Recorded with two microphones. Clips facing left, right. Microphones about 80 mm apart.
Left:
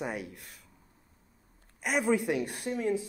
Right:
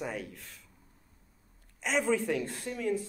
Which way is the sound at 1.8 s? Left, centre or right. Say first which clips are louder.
Left 1 dB; centre.